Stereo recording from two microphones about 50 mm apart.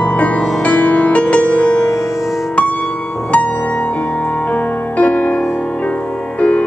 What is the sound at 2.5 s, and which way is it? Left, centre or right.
Music, left.